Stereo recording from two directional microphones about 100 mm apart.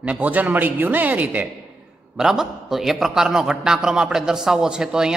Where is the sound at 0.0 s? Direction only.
15° right (ahead or behind).